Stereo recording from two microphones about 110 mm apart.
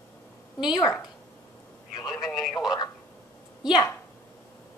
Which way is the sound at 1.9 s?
40° left (ahead or behind).